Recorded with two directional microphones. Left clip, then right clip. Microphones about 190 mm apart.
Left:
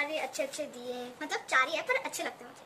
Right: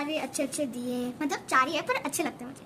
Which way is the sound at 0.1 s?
45° right (ahead or behind).